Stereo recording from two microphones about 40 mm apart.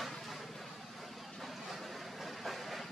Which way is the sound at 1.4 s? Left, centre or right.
Centre.